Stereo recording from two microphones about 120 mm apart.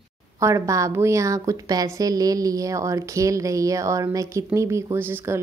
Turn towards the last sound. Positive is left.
turn(degrees=-20)  # may be behind; listen again after turning